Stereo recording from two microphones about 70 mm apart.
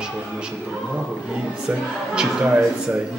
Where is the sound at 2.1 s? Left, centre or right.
Centre.